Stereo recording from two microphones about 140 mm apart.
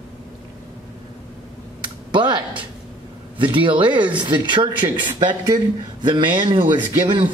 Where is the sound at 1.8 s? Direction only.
35° right (ahead or behind).